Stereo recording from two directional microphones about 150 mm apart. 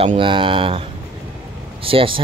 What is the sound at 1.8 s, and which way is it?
Speech, 35° right (ahead or behind).